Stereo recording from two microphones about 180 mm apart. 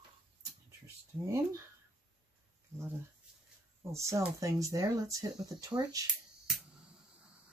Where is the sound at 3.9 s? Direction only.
15° right (ahead or behind).